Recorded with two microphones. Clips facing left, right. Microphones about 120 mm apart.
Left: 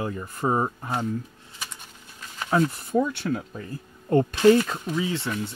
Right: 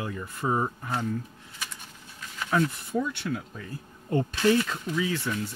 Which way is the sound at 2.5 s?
35° left (ahead or behind).